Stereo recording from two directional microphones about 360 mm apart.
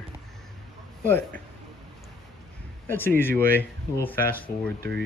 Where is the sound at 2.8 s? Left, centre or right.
Centre.